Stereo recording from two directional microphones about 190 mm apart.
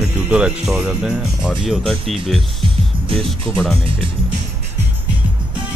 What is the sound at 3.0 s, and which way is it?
Speech, 30° right (ahead or behind).